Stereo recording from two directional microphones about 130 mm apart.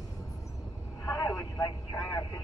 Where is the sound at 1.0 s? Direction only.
20° left (ahead or behind).